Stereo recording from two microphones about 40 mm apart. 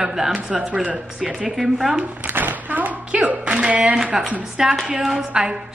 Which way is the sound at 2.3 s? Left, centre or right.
Right.